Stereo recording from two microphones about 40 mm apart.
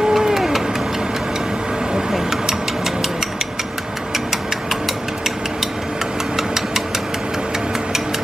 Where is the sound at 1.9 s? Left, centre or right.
Centre.